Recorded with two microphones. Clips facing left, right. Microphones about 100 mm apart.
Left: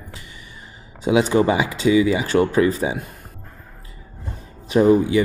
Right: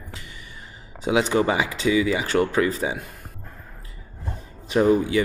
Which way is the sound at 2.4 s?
15° left (ahead or behind).